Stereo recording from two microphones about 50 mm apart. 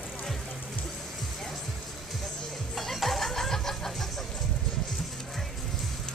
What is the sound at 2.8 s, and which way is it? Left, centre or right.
Vehicle, centre.